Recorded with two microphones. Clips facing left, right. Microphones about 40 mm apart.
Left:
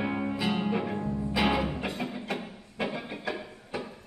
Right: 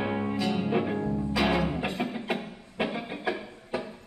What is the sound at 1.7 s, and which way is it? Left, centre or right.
Music, centre.